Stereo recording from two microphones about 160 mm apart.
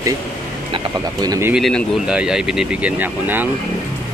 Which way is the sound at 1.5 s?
Centre (ahead or behind).